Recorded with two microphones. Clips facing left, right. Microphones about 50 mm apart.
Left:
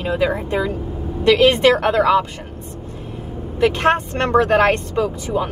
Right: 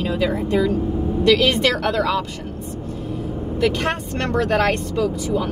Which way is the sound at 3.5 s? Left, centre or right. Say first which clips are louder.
Left 5 dB; left.